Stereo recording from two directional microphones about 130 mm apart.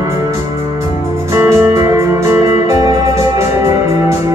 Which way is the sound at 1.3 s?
20° right (ahead or behind).